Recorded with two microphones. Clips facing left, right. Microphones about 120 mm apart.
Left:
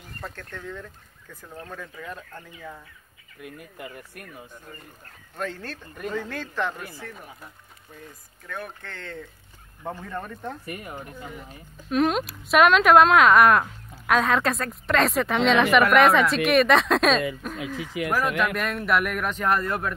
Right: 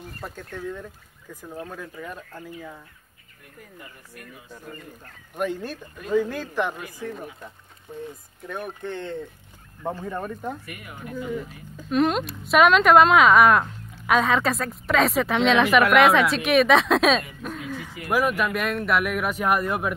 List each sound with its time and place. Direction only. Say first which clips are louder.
0.2 s speech: right 3 dB; 10° right (ahead or behind)
3.3 s speech: left 6 dB; 90° left; by 4.2 s 65° left (ahead or behind)
5.3 s speech: right 5 dB; 15° right (ahead or behind)
10.6 s speech: left 3 dB; 35° left (ahead or behind)
11.9 s speech: right 1 dB; centre (ahead or behind)